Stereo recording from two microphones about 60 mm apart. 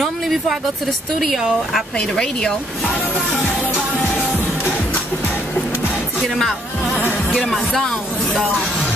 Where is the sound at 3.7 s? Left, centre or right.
Left.